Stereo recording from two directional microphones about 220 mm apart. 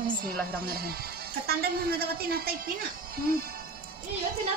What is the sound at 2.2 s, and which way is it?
Speech, 45° right (ahead or behind).